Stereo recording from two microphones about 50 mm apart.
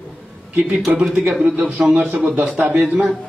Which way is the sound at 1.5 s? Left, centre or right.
Right.